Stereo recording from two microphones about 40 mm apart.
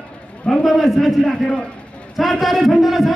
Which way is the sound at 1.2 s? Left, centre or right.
Centre.